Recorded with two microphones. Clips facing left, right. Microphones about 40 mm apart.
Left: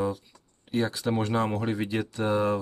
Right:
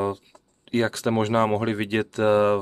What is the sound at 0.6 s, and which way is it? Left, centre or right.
Speech, right.